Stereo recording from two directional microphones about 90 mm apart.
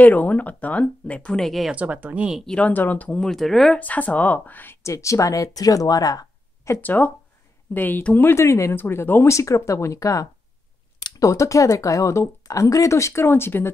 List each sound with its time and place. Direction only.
0.0 s speech: 20° left (ahead or behind)
1.7 s speech: 15° right (ahead or behind)
2.4 s speech: 10° left (ahead or behind)
2.7 s speech: 20° left (ahead or behind)
3.2 s speech: 5° left (ahead or behind)
3.8 s speech: 15° left (ahead or behind)
4.8 s speech: 35° left (ahead or behind)
6.8 s speech: 20° left (ahead or behind)